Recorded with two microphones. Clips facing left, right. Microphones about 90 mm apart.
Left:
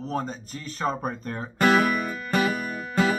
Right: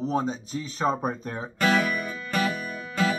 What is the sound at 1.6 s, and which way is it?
Music, 50° left (ahead or behind).